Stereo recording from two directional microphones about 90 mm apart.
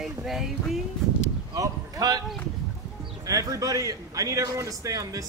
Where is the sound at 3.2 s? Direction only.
40° right (ahead or behind).